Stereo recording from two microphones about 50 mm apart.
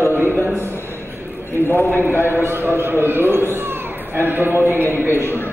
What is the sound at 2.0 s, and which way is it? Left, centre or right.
A man's voice, right.